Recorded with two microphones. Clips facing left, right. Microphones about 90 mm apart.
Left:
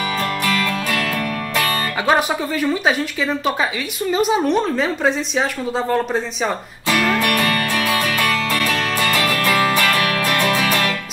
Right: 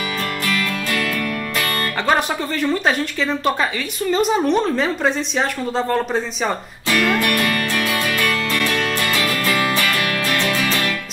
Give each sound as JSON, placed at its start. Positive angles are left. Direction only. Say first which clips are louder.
{"t": 2.0, "sound": "speech", "louder": "left 2 dB", "side_deg": 5}
{"t": 7.2, "sound": "music", "louder": "left 1 dB", "side_deg": 30}
{"t": 9.1, "sound": "music", "louder": "left 2 dB", "side_deg": 45}
{"t": 9.9, "sound": "music", "louder": "left 2 dB", "side_deg": 35}
{"t": 10.3, "sound": "music", "louder": "left 2 dB", "side_deg": 15}